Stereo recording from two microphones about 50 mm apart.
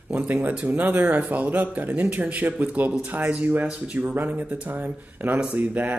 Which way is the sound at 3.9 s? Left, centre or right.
Right.